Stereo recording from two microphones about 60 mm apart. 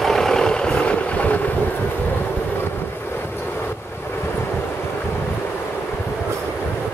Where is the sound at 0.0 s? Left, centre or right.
Centre; by 1.5 s left.